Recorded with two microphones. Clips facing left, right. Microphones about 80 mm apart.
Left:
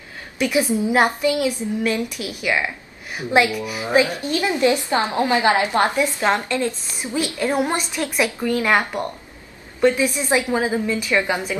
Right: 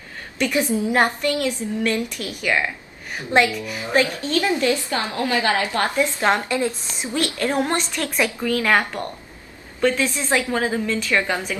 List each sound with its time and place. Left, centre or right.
0.4 s a woman's voice: centre
6.5 s a woman's voice: centre
7.2 s a woman's voice: centre
8.5 s a woman's voice: centre